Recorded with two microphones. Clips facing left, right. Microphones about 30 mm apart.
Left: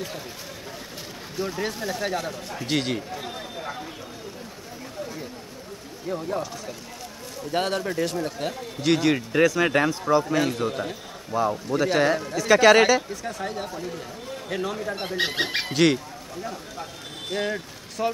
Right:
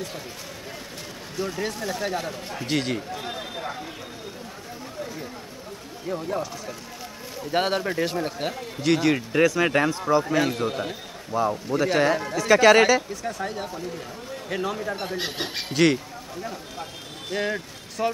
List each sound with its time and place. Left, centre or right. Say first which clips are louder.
1.4 s speech: even; centre
2.1 s speech: even; centre
2.6 s speech: even; centre
6.0 s speech: even; centre
8.8 s speech: even; centre
15.1 s speech: left 5 dB; left
15.7 s speech: right 1 dB; centre
17.3 s speech: right 1 dB; centre